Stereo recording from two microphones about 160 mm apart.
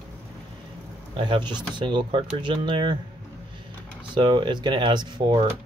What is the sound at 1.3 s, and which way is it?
Speech, 30° right (ahead or behind).